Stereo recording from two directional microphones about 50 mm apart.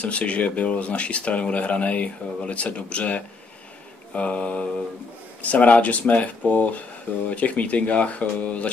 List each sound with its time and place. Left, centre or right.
0.0 s speech: left